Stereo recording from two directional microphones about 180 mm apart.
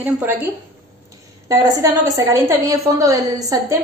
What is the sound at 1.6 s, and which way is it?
A woman's voice, 20° right (ahead or behind).